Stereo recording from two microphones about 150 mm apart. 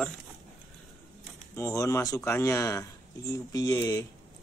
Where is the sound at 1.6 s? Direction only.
20° left (ahead or behind).